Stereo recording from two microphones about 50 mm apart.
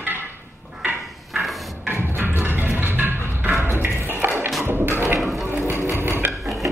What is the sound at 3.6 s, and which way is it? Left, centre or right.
Music, right.